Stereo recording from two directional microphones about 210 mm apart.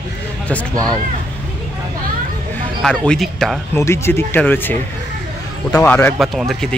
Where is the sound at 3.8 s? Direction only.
10° left (ahead or behind).